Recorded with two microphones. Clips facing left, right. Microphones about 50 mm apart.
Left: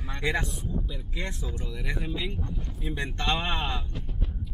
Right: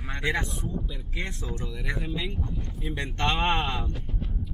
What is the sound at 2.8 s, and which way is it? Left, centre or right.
Speech, right.